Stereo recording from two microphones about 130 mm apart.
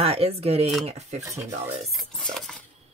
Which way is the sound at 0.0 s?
50° right (ahead or behind).